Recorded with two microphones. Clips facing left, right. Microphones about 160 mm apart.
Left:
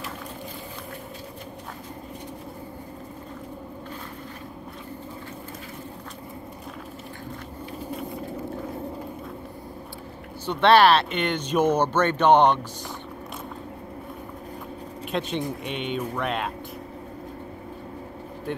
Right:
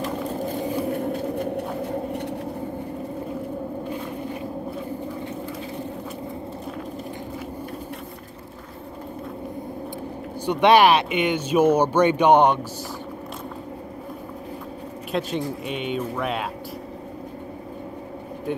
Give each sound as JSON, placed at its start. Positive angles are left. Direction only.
{"t": 0.7, "sound": "a sound", "side_deg": -60}
{"t": 10.4, "sound": "speech", "side_deg": -15}
{"t": 15.1, "sound": "speech", "side_deg": -5}